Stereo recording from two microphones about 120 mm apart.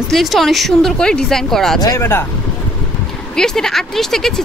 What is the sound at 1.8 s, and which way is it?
Speech, 20° left (ahead or behind).